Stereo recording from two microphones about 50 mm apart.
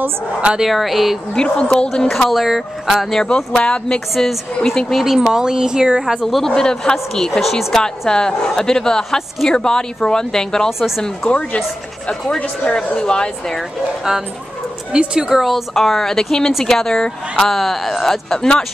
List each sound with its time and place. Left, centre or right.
0.7 s speech: centre
1.3 s speech: centre
2.2 s speech: centre
3.3 s speech: centre
4.1 s speech: centre
5.0 s speech: centre
6.2 s speech: centre
11.2 s speech: left
12.8 s speech: centre
13.6 s speech: centre
15.4 s speech: centre